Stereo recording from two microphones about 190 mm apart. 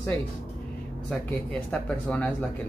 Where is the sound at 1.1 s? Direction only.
5° left (ahead or behind).